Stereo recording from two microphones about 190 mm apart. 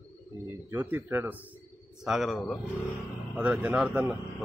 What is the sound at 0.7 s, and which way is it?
A man's voice, 10° right (ahead or behind).